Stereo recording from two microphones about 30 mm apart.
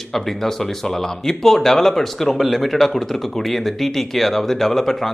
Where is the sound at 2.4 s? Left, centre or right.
Centre.